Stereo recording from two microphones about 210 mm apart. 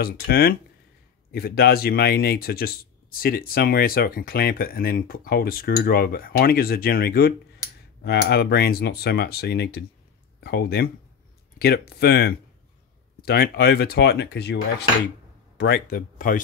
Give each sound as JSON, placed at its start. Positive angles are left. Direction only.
{"t": 0.0, "sound": "speech", "side_deg": 45}